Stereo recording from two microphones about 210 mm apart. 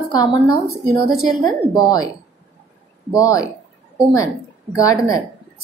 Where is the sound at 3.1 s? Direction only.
15° left (ahead or behind).